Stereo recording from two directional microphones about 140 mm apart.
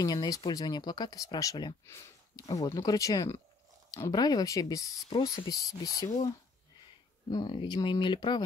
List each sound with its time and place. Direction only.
0.0 s speech: 25° left (ahead or behind)
7.2 s speech: 30° left (ahead or behind)